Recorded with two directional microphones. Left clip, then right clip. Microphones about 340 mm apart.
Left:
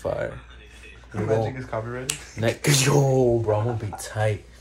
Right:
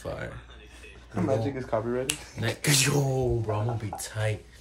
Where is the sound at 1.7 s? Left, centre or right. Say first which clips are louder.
Right 2 dB; right.